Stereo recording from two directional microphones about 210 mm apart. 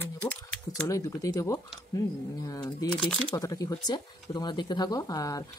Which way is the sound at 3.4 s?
15° left (ahead or behind).